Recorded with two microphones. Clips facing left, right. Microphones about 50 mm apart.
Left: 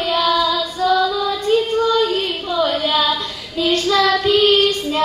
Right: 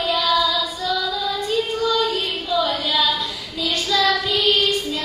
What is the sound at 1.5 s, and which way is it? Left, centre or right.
Child singing, left.